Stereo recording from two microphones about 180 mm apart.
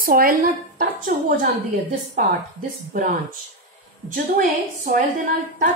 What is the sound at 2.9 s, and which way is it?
Speech, 50° right (ahead or behind).